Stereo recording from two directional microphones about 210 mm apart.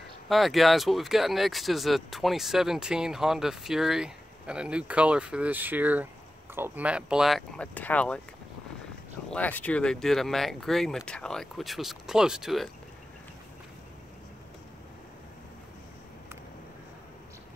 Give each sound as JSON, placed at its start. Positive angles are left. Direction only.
{"t": 0.3, "sound": "speech", "side_deg": 0}
{"t": 9.3, "sound": "speech", "side_deg": 5}